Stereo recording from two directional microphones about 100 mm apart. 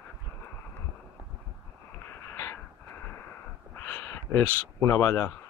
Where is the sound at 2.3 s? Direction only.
25° left (ahead or behind).